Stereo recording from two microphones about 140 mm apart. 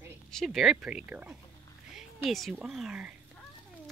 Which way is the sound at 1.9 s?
Centre (ahead or behind).